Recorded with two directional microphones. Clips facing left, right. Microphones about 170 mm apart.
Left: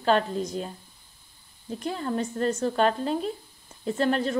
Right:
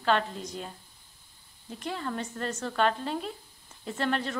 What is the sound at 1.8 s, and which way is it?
Speech, 35° left (ahead or behind).